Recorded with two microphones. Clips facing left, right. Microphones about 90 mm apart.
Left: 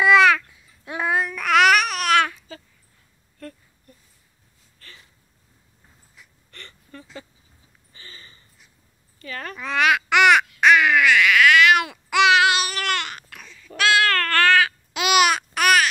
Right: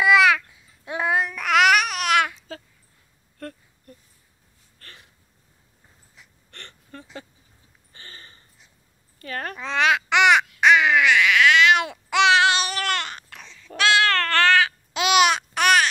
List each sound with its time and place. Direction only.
0.0 s babbling: 15° right (ahead or behind)
4.7 s hiccup: 55° right (ahead or behind)
6.2 s gasp: 25° right (ahead or behind)
6.5 s whimper: 60° right (ahead or behind)
7.9 s a sound: 60° right (ahead or behind)
9.6 s babbling: 25° right (ahead or behind)